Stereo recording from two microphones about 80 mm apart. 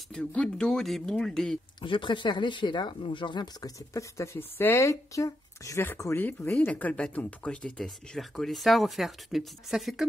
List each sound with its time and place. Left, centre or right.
0.1 s speech: centre
1.8 s speech: left
3.6 s speech: left; by 10.0 s centre